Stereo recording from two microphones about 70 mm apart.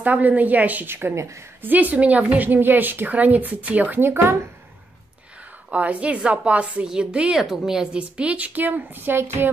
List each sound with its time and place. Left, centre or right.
0.0 s a woman's voice: right
1.6 s a woman's voice: right
5.7 s a woman's voice: right